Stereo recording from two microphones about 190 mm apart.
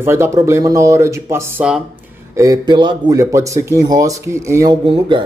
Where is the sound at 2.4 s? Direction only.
20° right (ahead or behind).